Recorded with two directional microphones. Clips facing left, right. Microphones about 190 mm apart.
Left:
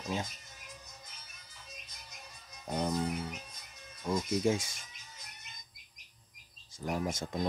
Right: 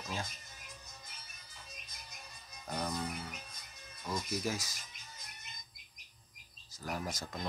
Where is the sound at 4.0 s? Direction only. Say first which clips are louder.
Left 7 dB; 25° left (ahead or behind).